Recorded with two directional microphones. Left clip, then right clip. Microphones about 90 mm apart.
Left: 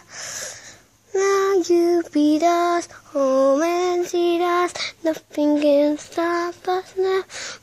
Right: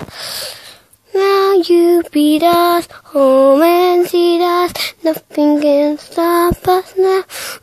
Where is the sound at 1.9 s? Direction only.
20° right (ahead or behind).